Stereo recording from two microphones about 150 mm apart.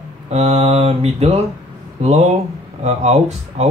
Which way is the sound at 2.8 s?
45° right (ahead or behind).